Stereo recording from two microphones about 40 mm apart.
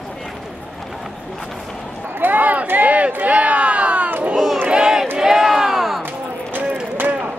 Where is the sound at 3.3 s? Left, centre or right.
Right.